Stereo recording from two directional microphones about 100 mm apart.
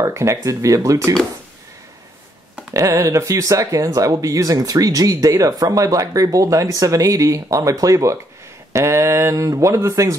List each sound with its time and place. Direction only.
0.0 s speech: 30° right (ahead or behind)
2.7 s speech: 30° right (ahead or behind)
8.7 s a sound: 25° right (ahead or behind)
9.8 s speech: 35° right (ahead or behind)